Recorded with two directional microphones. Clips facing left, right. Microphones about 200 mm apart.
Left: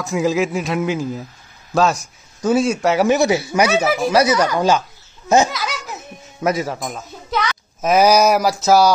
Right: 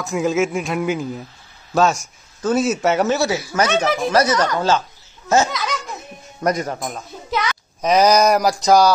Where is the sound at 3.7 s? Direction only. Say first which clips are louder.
Left 2 dB; 5° left (ahead or behind).